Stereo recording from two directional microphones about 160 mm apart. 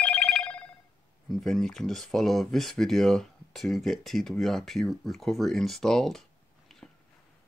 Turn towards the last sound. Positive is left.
turn(degrees=0)  # may be behind; listen again after turning